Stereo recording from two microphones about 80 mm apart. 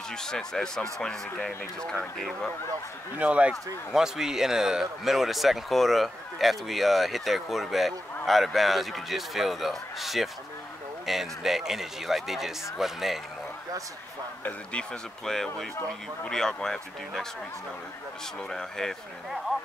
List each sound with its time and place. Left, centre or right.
0.1 s speech: centre
3.2 s speech: centre
3.9 s a man's voice: centre
14.4 s speech: centre
18.5 s a man's voice: centre